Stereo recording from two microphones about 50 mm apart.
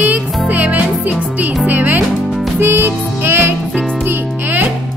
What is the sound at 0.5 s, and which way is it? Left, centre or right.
Music, right.